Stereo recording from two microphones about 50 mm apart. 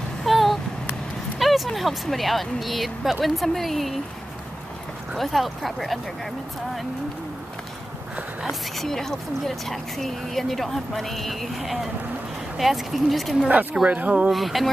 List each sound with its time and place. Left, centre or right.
0.2 s vehicle: centre
1.4 s speech: centre
5.1 s speech: centre
8.7 s speech: centre
13.8 s speech: right
14.3 s speech: centre